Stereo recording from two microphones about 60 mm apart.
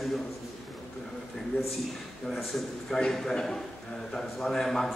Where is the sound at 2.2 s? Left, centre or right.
Centre.